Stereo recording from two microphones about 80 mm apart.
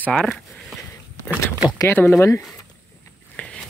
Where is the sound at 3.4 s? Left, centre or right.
Centre.